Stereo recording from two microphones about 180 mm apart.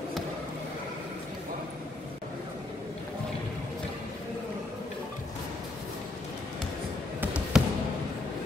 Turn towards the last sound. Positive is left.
turn(degrees=-5)  # may be behind; listen again after turning